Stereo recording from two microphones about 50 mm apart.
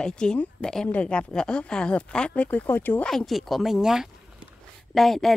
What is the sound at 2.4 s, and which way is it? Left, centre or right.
Speech, left.